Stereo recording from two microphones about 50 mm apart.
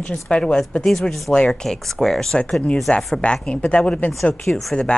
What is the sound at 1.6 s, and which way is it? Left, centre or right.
Speech, centre.